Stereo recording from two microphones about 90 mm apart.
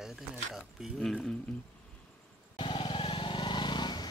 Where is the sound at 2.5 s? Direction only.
70° left (ahead or behind); by 4.0 s 55° left (ahead or behind).